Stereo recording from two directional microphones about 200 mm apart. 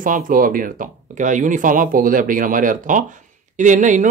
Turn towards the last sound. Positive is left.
turn(degrees=-40)  # may be behind; listen again after turning